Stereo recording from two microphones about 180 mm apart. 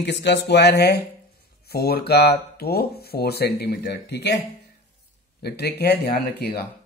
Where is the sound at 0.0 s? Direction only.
70° left (ahead or behind).